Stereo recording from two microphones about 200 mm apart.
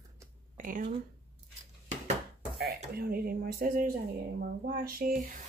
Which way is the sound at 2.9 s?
50° right (ahead or behind).